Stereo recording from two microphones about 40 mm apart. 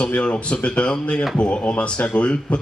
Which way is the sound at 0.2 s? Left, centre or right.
Left.